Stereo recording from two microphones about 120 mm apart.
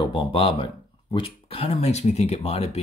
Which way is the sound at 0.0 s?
45° left (ahead or behind).